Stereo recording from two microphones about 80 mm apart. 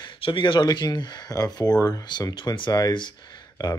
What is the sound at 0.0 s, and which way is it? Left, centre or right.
Speech, left.